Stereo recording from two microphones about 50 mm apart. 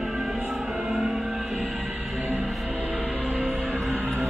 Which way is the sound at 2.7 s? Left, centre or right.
Centre.